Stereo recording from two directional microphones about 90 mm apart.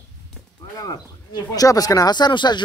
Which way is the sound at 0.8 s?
40° left (ahead or behind).